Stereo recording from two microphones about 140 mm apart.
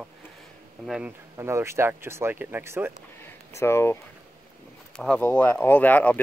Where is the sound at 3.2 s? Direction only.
20° left (ahead or behind).